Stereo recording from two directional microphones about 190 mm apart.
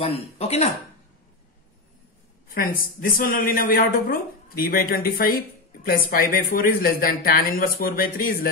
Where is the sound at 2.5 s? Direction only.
50° left (ahead or behind).